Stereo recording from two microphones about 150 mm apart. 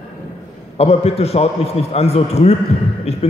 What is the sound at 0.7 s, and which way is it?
A man's voice, 45° left (ahead or behind).